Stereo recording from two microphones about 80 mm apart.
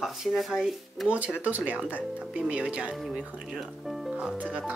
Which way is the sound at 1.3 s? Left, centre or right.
Centre.